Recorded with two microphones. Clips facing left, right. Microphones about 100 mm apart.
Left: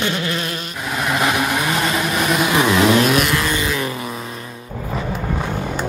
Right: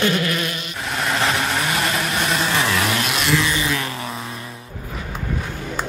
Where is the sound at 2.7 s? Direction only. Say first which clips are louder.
Left 7 dB; 25° left (ahead or behind).